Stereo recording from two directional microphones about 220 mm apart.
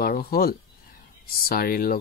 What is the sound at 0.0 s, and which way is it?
Speech, 45° left (ahead or behind).